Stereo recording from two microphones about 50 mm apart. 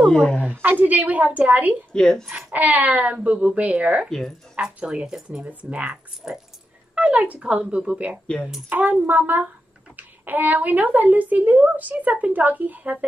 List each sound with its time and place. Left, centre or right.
0.0 s a woman's voice: centre
0.6 s speech: right
2.0 s a woman's voice: centre
2.2 s speech: right
4.8 s speech: centre
5.5 s speech: right
8.6 s speech: right